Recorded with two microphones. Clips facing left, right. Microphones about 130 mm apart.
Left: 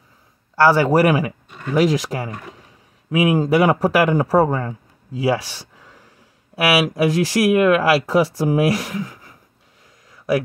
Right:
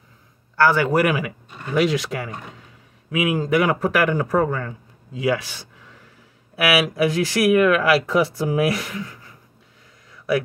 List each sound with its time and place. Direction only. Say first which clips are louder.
0.6 s speech: left 3 dB; 35° left (ahead or behind)